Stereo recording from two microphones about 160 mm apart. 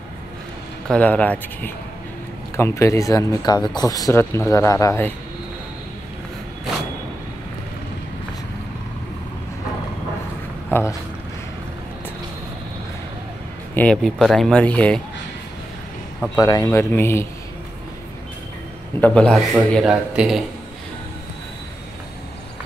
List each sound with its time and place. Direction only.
0.8 s speech: 10° left (ahead or behind)
10.7 s speech: 15° left (ahead or behind)
13.7 s speech: 5° left (ahead or behind)
16.3 s speech: 20° left (ahead or behind)
18.9 s a man's voice: 10° left (ahead or behind)